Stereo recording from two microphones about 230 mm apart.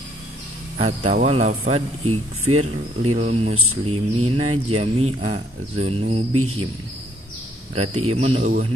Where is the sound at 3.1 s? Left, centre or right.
Right.